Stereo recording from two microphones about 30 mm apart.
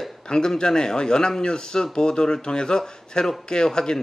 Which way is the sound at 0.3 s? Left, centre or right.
Left.